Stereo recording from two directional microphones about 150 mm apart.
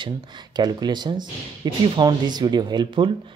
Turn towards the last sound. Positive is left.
turn(degrees=-35)  # may be behind; listen again after turning